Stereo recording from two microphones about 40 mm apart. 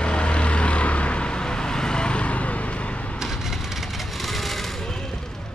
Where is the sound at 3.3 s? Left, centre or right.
Centre.